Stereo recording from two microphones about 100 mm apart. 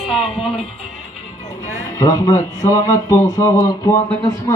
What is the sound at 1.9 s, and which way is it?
Speech, 35° left (ahead or behind).